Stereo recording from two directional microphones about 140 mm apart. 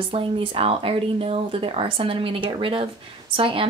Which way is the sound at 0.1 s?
40° right (ahead or behind).